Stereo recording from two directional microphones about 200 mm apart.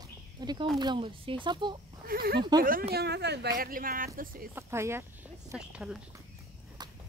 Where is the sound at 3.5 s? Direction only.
45° right (ahead or behind).